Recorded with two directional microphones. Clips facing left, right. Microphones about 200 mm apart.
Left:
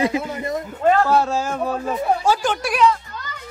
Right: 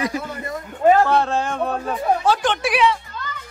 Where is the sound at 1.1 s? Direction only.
5° left (ahead or behind).